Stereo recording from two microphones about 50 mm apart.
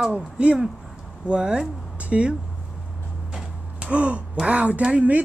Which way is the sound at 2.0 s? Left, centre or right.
Right.